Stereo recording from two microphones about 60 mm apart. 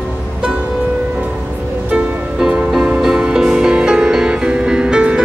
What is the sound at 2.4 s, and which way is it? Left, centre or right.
Music, centre.